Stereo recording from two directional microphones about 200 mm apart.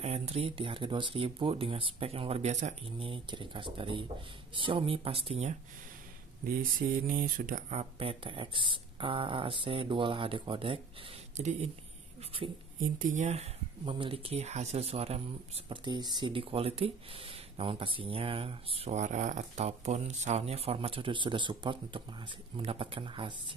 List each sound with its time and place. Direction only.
0.0 s speech: 30° right (ahead or behind)
6.4 s speech: 45° right (ahead or behind)
8.0 s speech: 25° right (ahead or behind)
12.7 s speech: 40° right (ahead or behind); by 23.3 s 25° right (ahead or behind)